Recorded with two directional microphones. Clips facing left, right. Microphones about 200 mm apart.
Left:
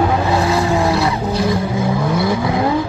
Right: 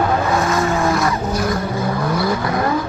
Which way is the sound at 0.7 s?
15° left (ahead or behind).